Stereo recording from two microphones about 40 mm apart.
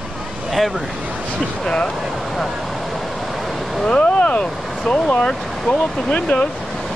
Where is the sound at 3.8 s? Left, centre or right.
Left.